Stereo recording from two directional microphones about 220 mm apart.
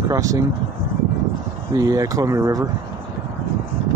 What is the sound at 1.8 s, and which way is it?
Speech, 15° right (ahead or behind).